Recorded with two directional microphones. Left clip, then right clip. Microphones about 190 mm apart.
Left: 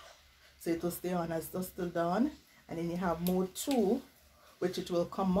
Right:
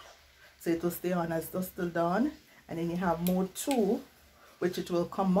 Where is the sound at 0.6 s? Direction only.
15° right (ahead or behind).